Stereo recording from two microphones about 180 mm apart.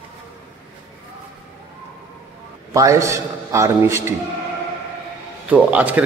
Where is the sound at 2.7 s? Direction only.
15° right (ahead or behind).